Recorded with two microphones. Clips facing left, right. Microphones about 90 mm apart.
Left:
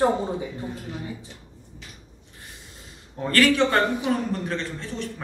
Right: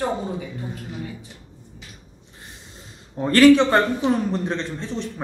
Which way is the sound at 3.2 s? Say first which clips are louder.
Right 7 dB; 20° right (ahead or behind).